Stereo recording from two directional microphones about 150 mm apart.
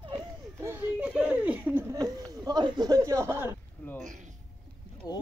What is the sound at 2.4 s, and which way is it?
Speech, 25° right (ahead or behind).